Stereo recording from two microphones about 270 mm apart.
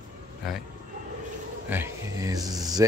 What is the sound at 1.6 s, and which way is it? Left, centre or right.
Speech, centre.